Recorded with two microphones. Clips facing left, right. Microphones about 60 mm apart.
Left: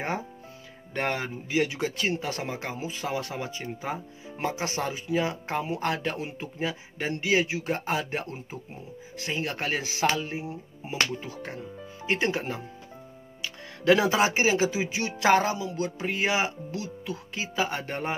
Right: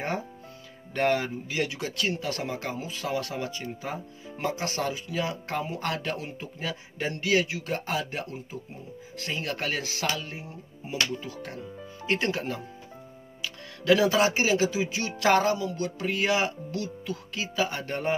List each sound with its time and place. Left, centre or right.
0.9 s speech: centre
9.1 s speech: centre; by 11.6 s left
11.6 s speech: centre
13.8 s speech: left